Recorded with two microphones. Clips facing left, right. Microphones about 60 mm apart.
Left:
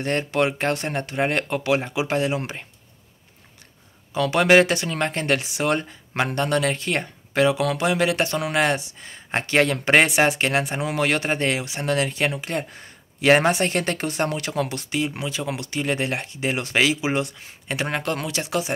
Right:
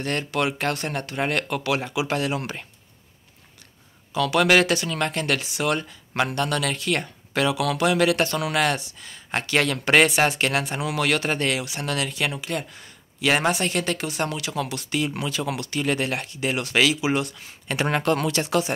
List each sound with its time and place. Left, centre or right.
0.0 s speech: left
4.1 s speech: left
14.9 s speech: centre
17.7 s speech: centre